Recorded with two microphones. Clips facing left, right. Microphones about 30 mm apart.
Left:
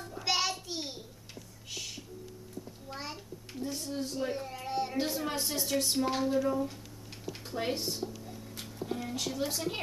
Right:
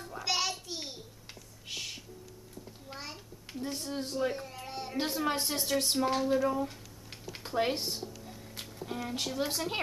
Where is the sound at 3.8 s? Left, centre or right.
Centre.